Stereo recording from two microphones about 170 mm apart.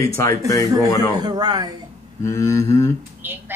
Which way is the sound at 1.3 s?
25° right (ahead or behind).